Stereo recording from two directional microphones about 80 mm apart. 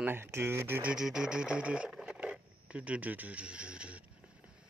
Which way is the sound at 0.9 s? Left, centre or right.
Centre.